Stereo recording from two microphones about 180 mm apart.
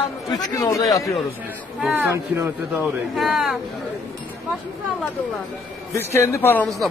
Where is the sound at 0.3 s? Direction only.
20° left (ahead or behind).